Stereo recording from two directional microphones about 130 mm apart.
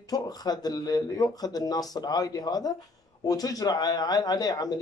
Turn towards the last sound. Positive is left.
turn(degrees=30)  # may be behind; listen again after turning